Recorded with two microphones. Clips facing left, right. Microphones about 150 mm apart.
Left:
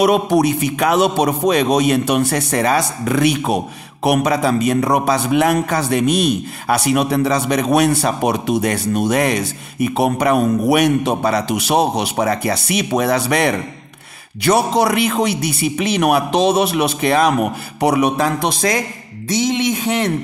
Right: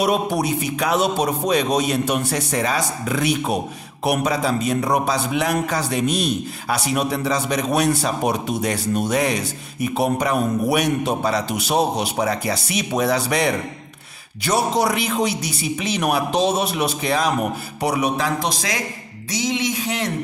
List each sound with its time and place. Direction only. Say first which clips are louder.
0.0 s a man's voice: left 6 dB; 75° left (ahead or behind); by 20.1 s 55° left (ahead or behind)